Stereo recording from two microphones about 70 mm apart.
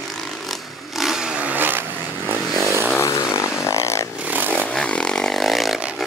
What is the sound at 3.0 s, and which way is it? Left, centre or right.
Vehicle, left.